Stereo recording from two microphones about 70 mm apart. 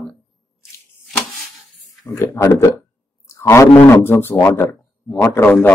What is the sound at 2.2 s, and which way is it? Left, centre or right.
A man's voice, left.